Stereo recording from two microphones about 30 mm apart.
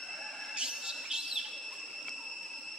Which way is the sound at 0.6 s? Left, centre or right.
Right.